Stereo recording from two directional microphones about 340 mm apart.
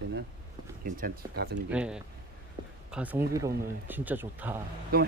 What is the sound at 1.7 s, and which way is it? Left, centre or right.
Speech, centre.